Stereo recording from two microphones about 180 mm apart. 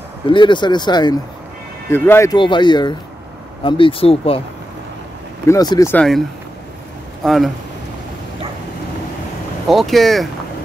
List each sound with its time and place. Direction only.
0.3 s speech: 25° left (ahead or behind)
1.9 s speech: 15° left (ahead or behind)
2.3 s speech: 25° left (ahead or behind)
5.5 s speech: 20° left (ahead or behind)
7.2 s speech: centre (ahead or behind)
9.7 s speech: centre (ahead or behind)